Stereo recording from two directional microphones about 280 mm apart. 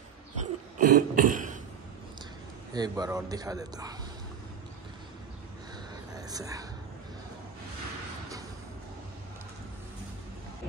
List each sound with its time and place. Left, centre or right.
0.4 s cough: right
2.7 s a man's voice: centre
6.1 s a sound: centre